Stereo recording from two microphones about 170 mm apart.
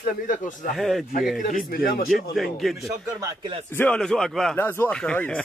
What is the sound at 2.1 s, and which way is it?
Speech, centre (ahead or behind).